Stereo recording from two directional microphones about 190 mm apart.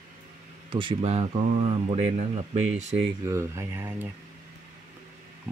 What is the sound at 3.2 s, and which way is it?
Speech, 15° right (ahead or behind).